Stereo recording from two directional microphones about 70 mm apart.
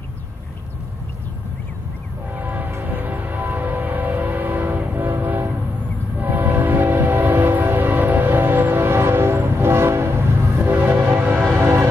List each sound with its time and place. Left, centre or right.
2.3 s train: right
2.8 s music: right
6.1 s train: right
11.5 s music: right